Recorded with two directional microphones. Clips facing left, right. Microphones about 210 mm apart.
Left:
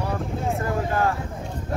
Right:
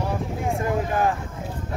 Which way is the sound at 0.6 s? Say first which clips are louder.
Right 2 dB; 15° right (ahead or behind).